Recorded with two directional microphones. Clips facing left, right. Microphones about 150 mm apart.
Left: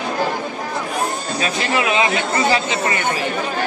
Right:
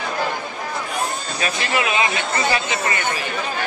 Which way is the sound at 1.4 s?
25° left (ahead or behind).